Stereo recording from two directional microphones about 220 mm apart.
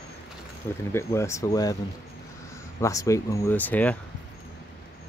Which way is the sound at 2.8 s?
15° left (ahead or behind).